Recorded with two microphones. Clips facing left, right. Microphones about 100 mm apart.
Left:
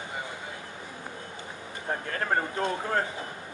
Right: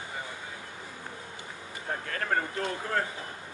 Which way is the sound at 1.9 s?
25° left (ahead or behind).